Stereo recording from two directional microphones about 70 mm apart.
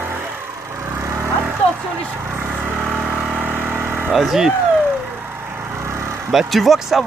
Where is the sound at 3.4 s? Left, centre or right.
Right.